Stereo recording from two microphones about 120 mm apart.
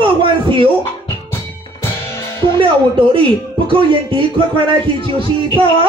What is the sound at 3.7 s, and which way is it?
Speech, 45° right (ahead or behind).